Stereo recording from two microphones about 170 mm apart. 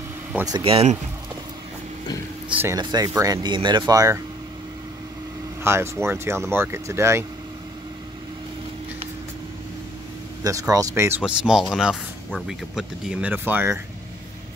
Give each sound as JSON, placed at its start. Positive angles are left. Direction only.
{"t": 0.5, "sound": "speech", "side_deg": -30}
{"t": 2.8, "sound": "speech", "side_deg": -20}
{"t": 5.6, "sound": "speech", "side_deg": -15}
{"t": 10.4, "sound": "speech", "side_deg": -20}